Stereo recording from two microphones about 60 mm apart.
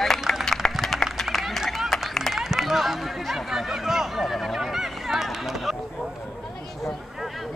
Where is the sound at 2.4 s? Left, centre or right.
Centre.